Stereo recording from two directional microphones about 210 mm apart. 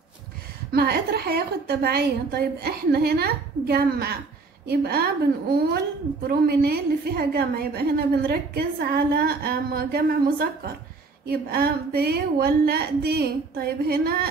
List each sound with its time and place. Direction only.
0.7 s a woman's voice: 50° right (ahead or behind)